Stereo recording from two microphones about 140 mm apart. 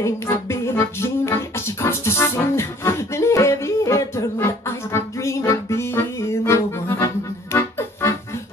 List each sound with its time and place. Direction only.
0.0 s music: 20° left (ahead or behind)